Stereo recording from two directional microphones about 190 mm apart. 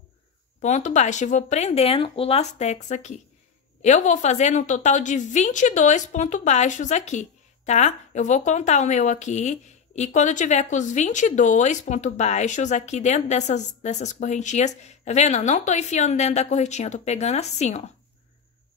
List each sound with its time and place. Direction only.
0.6 s a woman's voice: 40° left (ahead or behind)